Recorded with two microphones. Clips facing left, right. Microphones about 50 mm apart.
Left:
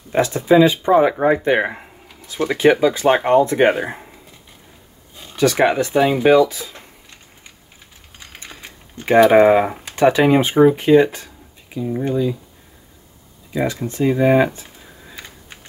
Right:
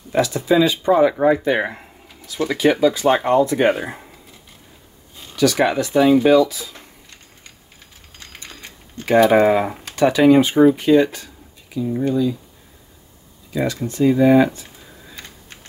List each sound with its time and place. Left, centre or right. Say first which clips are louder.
0.1 s speech: left 3 dB; left
3.7 s speech: left 3 dB; centre
5.3 s speech: left 1 dB; left
8.4 s a sound: left 1 dB; centre
9.4 s speech: left 3 dB; centre
9.9 s speech: right 1 dB; left
13.5 s speech: left 1 dB; centre
15.1 s computer keyboard: left 2 dB; centre